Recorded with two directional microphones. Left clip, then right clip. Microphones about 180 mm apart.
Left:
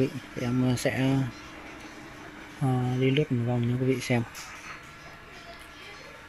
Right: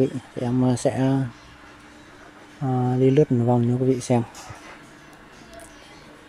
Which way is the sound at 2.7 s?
20° right (ahead or behind).